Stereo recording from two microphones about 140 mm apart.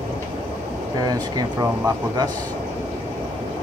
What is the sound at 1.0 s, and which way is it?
Speech, 30° right (ahead or behind).